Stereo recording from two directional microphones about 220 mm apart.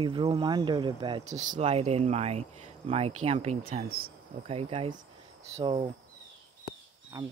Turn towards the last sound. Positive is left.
turn(degrees=-15)  # may be behind; listen again after turning